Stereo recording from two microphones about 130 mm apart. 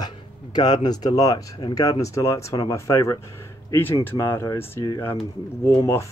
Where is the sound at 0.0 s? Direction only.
30° left (ahead or behind).